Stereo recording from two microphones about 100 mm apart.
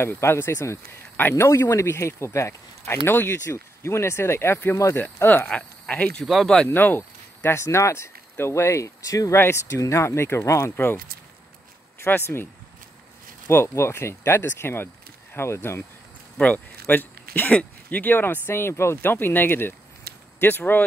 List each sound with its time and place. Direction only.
0.0 s speech: 25° left (ahead or behind)
6.2 s speech: centre (ahead or behind)
6.7 s speech: 20° left (ahead or behind)
12.0 s speech: 25° left (ahead or behind)
13.5 s speech: 25° left (ahead or behind)
16.3 s speech: 15° left (ahead or behind)